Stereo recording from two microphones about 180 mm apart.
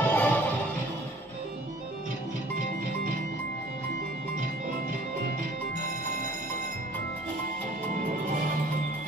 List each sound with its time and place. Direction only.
0.0 s music: 10° left (ahead or behind)